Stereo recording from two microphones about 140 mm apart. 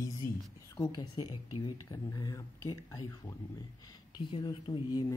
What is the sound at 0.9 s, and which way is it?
Speech, 30° left (ahead or behind).